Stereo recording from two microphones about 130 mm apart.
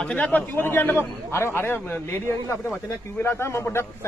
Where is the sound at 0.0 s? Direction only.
10° left (ahead or behind).